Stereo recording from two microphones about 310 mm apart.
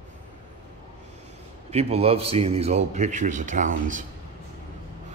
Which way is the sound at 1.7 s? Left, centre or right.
Centre.